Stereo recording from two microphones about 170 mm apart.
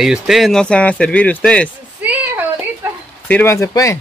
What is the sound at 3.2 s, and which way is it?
Speech, 10° left (ahead or behind).